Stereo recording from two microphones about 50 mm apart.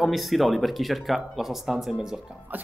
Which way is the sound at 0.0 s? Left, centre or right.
Centre.